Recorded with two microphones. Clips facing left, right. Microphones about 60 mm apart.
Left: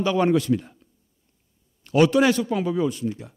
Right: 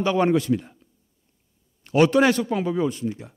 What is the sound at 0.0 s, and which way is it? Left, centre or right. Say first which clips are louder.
Speech: even; right.